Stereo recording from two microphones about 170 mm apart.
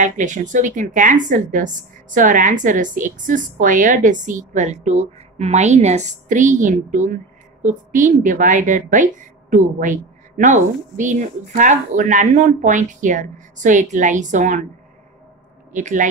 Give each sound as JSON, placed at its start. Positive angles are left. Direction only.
{"t": 0.0, "sound": "a woman's voice", "side_deg": -45}
{"t": 15.7, "sound": "a woman's voice", "side_deg": -45}